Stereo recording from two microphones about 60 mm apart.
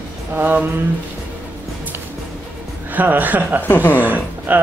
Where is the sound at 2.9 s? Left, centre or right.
Right.